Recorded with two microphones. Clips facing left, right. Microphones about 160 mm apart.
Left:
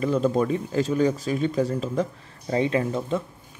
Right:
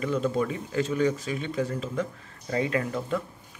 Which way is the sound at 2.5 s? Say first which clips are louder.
Left 4 dB; 25° left (ahead or behind).